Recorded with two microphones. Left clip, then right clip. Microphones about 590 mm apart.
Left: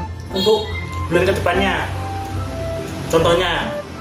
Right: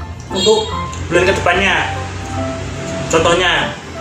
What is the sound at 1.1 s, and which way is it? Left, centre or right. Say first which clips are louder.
Speech: right 4 dB; left.